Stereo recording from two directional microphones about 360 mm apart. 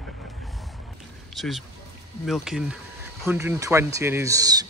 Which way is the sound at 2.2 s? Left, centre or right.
Centre.